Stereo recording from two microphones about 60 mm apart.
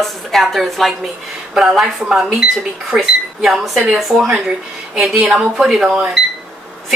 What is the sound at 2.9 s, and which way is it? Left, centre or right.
Speech, centre.